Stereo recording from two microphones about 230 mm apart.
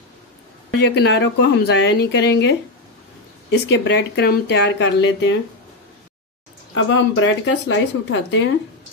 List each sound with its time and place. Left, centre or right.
0.7 s speech: left
6.7 s speech: left